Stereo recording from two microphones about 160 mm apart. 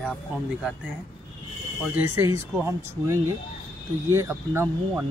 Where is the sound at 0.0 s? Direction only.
5° right (ahead or behind).